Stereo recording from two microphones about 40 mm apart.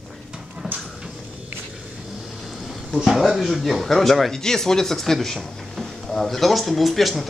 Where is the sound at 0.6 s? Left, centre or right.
Centre.